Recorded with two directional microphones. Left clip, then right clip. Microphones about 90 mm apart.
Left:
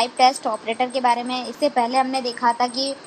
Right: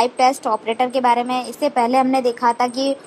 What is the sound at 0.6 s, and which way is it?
A woman's voice, 35° right (ahead or behind).